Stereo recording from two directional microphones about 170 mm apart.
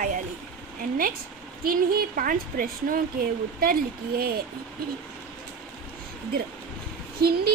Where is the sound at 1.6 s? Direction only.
60° right (ahead or behind).